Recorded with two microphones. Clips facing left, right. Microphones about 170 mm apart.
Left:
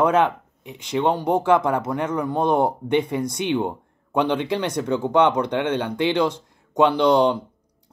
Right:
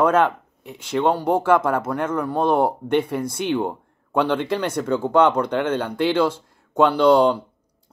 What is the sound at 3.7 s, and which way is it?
Speech, 15° left (ahead or behind).